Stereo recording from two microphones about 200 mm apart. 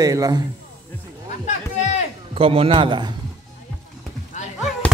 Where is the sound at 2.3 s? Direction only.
30° right (ahead or behind).